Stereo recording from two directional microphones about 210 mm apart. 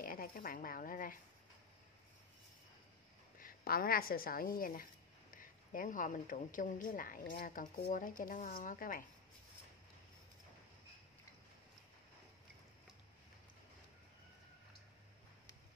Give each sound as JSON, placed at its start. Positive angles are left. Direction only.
{"t": 0.0, "sound": "a woman's voice", "side_deg": 45}
{"t": 3.3, "sound": "a woman's voice", "side_deg": 45}